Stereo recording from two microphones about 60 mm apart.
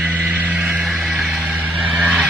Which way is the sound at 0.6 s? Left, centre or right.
Centre.